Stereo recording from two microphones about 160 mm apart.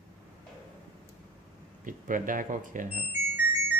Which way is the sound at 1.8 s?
55° right (ahead or behind).